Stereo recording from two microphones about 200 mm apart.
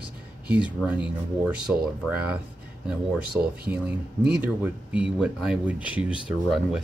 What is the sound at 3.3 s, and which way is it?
Speech, 5° right (ahead or behind).